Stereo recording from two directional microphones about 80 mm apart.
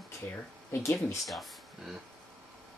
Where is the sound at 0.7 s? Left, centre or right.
Left.